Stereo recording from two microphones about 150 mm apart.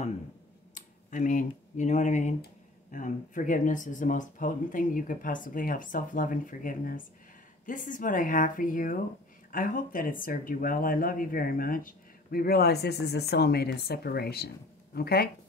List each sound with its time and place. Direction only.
0.7 s speech: 60° left (ahead or behind); by 15.2 s 90° left